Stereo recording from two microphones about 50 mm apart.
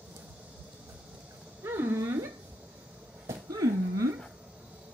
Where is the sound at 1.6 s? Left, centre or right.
Right.